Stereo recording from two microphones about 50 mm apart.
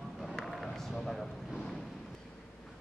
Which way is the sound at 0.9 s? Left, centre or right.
Centre.